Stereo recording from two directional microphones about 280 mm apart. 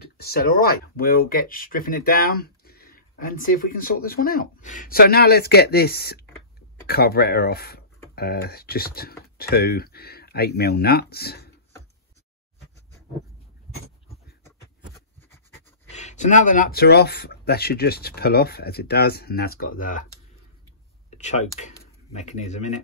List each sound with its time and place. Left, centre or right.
0.0 s speech: left
15.9 s speech: left
21.1 s speech: left